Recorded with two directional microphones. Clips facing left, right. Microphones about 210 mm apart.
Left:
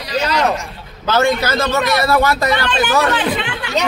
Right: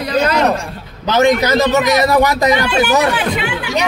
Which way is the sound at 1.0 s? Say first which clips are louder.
Right 3 dB; 15° right (ahead or behind).